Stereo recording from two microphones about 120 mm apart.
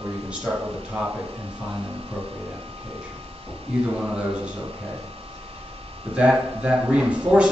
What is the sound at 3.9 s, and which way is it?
Speech, 5° right (ahead or behind).